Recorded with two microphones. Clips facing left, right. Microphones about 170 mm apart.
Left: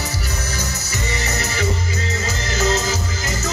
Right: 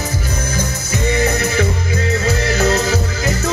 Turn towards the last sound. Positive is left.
turn(degrees=-60)  # may be behind; listen again after turning